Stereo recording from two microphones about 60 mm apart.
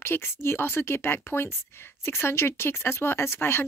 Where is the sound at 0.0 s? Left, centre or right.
Left.